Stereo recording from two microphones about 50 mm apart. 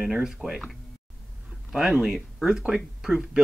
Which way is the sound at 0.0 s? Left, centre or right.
Centre.